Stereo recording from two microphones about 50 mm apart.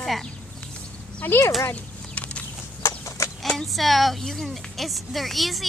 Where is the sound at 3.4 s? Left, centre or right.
Centre.